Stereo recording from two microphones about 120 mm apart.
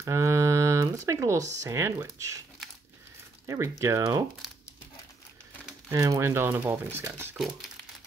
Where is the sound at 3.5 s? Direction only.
25° right (ahead or behind).